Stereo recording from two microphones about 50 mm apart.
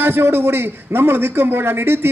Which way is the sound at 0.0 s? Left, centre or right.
Right.